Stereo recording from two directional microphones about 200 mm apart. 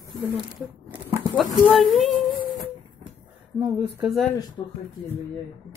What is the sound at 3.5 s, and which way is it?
Speech, 10° right (ahead or behind).